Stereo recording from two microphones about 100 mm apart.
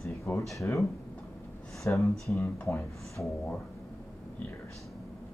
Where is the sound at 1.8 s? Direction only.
30° left (ahead or behind).